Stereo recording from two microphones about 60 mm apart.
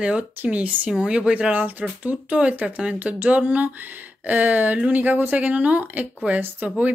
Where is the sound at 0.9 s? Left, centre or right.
Centre.